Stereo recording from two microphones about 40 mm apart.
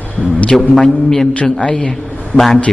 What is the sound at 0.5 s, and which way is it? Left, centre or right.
Speech, centre.